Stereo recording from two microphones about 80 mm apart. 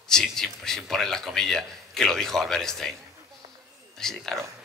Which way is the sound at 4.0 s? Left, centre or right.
Centre.